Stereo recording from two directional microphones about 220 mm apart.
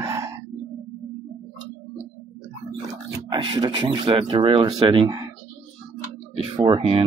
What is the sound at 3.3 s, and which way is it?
Speech, 20° right (ahead or behind).